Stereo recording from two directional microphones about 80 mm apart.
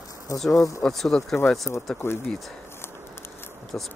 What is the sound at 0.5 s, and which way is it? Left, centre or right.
Speech, left.